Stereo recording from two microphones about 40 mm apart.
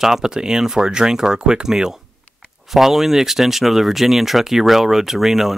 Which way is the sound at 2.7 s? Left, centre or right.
Centre.